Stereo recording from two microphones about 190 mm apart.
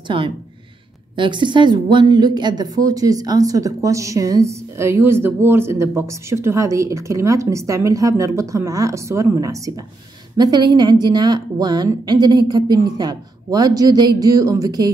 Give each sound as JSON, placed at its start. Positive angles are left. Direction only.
{"t": 1.1, "sound": "a woman's voice", "side_deg": -25}